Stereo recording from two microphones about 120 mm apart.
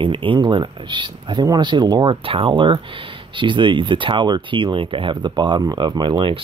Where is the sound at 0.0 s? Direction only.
45° right (ahead or behind).